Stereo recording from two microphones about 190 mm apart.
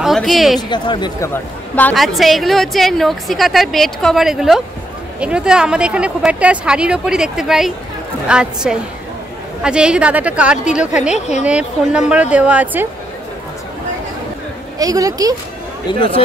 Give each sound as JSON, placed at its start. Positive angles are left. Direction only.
{"t": 0.0, "sound": "a woman's voice", "side_deg": 0}
{"t": 0.6, "sound": "speech", "side_deg": 25}
{"t": 1.3, "sound": "a woman's voice", "side_deg": 10}
{"t": 14.8, "sound": "speech", "side_deg": -20}